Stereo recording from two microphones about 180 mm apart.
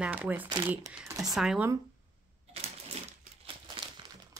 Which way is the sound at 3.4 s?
30° right (ahead or behind).